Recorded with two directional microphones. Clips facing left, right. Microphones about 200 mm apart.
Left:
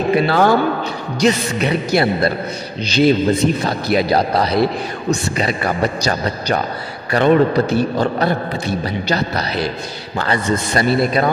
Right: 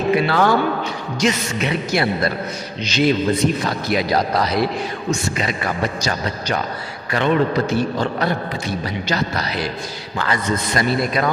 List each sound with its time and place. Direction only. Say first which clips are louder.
0.1 s a man's voice: left 3 dB; 35° left (ahead or behind)
10.1 s a man's voice: left 3 dB; 30° left (ahead or behind)